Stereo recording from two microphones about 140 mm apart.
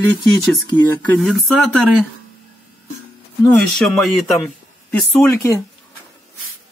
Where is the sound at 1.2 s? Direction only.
Centre (ahead or behind).